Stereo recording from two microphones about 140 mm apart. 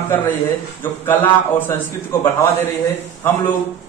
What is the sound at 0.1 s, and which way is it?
Speech, 15° left (ahead or behind).